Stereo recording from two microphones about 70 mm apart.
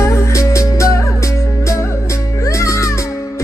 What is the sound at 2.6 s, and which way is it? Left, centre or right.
Music, left.